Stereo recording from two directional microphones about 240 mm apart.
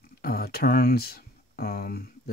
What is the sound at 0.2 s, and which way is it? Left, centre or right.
Speech, left.